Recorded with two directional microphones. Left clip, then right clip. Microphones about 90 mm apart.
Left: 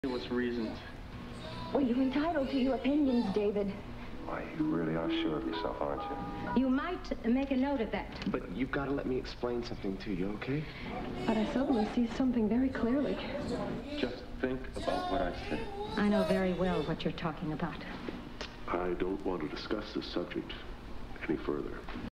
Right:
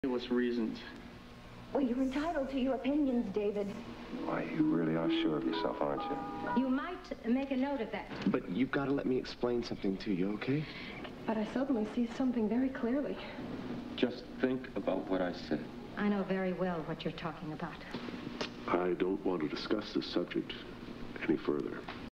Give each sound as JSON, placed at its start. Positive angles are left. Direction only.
{"t": 0.0, "sound": "speech", "side_deg": -35}
{"t": 1.7, "sound": "speech", "side_deg": -35}